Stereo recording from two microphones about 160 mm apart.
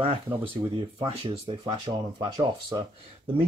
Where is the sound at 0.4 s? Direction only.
30° right (ahead or behind).